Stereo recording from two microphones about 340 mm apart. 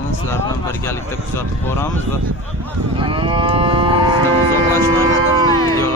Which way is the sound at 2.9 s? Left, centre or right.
Centre.